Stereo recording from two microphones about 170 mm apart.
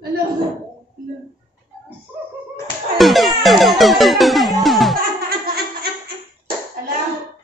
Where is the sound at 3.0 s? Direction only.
Centre (ahead or behind).